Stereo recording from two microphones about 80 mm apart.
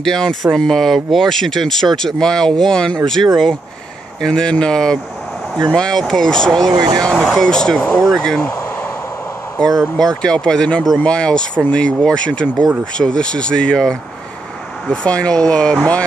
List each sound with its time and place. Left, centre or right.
0.0 s speech: centre
4.2 s speech: centre
6.6 s speech: right
7.1 s speech: centre
8.4 s a sound: left
10.2 s speech: centre